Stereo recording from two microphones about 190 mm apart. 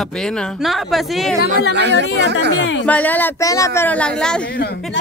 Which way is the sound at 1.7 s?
65° right (ahead or behind).